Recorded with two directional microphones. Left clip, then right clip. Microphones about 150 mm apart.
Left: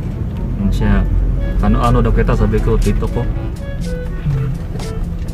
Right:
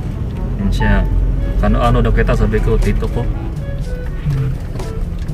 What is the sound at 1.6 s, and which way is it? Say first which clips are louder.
Speech: even; 5° left (ahead or behind).